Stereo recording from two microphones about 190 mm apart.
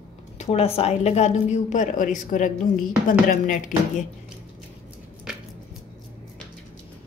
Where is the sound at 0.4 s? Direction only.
30° left (ahead or behind).